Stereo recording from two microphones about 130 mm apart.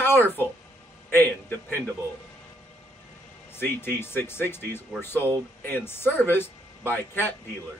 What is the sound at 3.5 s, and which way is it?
Speech, 15° left (ahead or behind).